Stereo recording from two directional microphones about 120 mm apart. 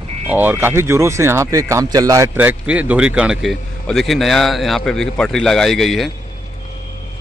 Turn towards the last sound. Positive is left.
turn(degrees=0)  # may be behind; listen again after turning